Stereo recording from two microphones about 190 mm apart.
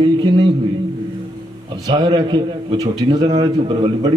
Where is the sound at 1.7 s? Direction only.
20° right (ahead or behind).